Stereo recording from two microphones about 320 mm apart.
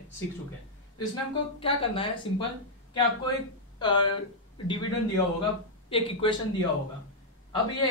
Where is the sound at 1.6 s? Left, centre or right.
Centre.